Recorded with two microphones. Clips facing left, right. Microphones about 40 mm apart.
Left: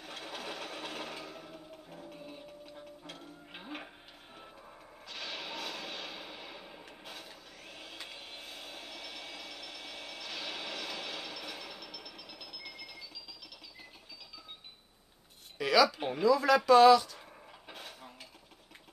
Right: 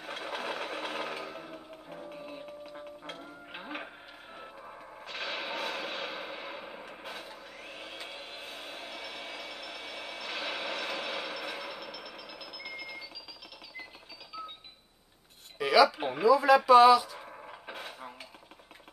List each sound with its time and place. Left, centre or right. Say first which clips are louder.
0.0 s sewing machine: right 6 dB; centre
2.1 s music: right 5 dB; right
3.1 s printer: right 5 dB; right
4.4 s music: right 6 dB; right
10.2 s a sound: right 6 dB; right; by 13.0 s centre
15.5 s speech: right 3 dB; centre
17.3 s a sound: right 7 dB; right